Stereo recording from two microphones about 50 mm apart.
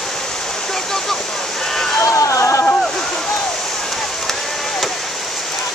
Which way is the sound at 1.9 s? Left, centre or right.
Left.